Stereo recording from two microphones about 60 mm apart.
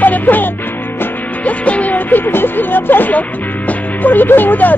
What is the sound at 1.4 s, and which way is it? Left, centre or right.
Speech, left.